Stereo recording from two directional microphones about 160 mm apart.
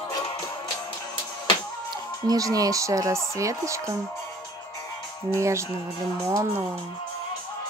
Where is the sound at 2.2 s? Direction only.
20° right (ahead or behind).